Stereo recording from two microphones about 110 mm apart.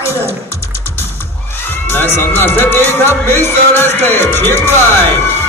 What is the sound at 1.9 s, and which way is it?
Music, 20° left (ahead or behind).